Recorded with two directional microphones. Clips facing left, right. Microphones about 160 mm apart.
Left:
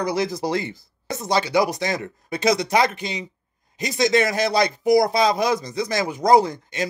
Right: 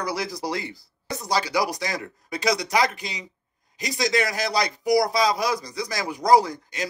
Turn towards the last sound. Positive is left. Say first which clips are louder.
# left 4 dB
turn(degrees=25)  # may be behind; listen again after turning